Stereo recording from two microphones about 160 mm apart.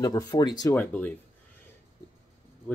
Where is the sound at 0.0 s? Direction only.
25° left (ahead or behind).